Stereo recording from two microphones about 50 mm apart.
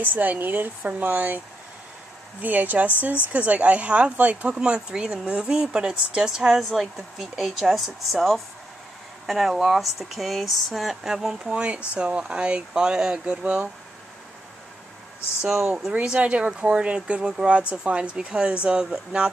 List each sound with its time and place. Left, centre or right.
0.0 s speech: right
2.4 s speech: right
4.6 s speech: centre
11.5 s speech: right
15.4 s speech: centre
15.9 s speech: right